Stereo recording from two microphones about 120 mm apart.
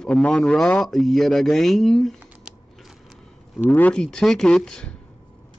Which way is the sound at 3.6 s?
15° left (ahead or behind).